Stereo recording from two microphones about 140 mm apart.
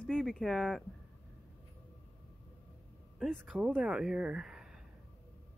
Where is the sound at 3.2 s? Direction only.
5° right (ahead or behind).